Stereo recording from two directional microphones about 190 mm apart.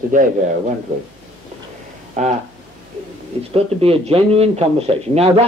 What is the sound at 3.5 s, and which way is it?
Speech, 30° right (ahead or behind).